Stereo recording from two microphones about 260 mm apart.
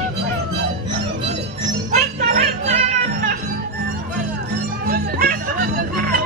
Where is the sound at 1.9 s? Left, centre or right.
Right.